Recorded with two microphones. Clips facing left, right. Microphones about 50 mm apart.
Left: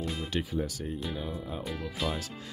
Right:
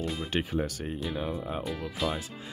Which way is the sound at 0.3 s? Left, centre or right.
Right.